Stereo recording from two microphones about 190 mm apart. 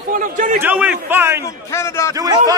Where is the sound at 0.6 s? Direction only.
10° right (ahead or behind).